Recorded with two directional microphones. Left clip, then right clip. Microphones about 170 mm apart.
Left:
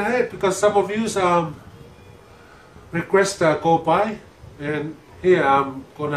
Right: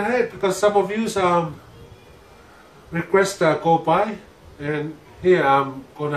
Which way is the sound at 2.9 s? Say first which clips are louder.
Even; 20° left (ahead or behind).